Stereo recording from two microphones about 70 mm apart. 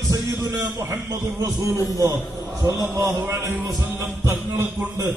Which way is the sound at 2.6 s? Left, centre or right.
Right.